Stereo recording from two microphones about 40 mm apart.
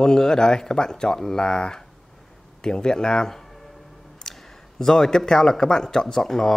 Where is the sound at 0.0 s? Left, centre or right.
Centre.